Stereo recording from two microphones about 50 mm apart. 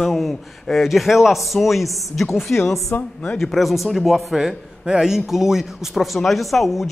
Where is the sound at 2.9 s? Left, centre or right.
Left.